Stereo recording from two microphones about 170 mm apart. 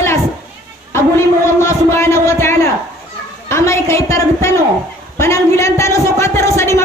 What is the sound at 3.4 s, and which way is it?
A woman's voice, 15° left (ahead or behind).